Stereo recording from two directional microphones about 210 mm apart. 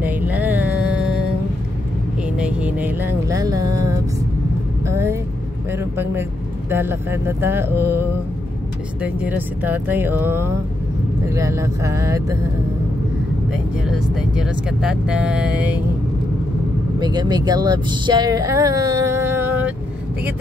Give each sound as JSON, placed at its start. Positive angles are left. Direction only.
{"t": 0.0, "sound": "a sound", "side_deg": -10}
{"t": 2.2, "sound": "music", "side_deg": -5}
{"t": 4.8, "sound": "speech", "side_deg": -10}
{"t": 9.0, "sound": "speech", "side_deg": -5}
{"t": 13.5, "sound": "speech", "side_deg": 0}
{"t": 17.0, "sound": "speech", "side_deg": -20}